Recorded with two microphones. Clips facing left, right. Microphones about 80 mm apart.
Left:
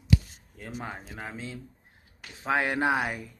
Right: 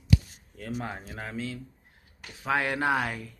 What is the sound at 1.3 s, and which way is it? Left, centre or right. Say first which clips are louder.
Speech: right 4 dB; left.